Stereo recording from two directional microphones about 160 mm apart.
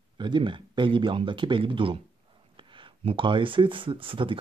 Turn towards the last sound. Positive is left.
turn(degrees=-35)  # may be behind; listen again after turning